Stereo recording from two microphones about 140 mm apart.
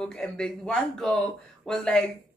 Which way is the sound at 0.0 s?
5° left (ahead or behind).